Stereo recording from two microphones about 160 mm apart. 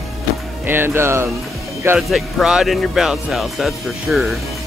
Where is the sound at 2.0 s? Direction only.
Centre (ahead or behind).